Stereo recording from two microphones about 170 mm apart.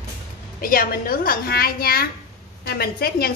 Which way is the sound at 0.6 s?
55° left (ahead or behind).